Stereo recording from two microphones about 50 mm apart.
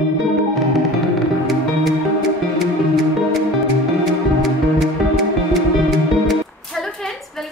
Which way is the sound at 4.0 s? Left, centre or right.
Centre.